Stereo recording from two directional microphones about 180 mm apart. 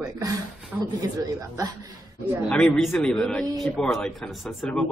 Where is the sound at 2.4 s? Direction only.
5° left (ahead or behind).